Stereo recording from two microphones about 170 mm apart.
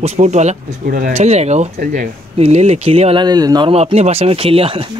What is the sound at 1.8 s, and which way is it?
Speech, 50° right (ahead or behind).